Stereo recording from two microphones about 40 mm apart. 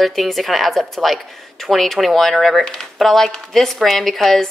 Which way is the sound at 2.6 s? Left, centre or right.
Centre.